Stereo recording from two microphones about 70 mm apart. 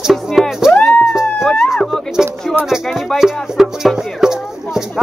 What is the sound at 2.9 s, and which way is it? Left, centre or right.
Speech, centre.